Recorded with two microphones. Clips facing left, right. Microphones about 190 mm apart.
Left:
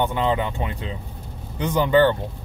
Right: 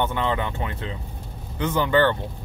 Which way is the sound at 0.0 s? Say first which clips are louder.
Left 3 dB; 15° left (ahead or behind).